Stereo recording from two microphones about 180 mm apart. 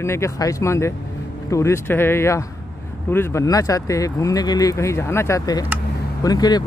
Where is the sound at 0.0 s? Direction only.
15° left (ahead or behind).